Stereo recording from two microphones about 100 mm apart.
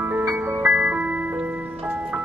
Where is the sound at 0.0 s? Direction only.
20° right (ahead or behind).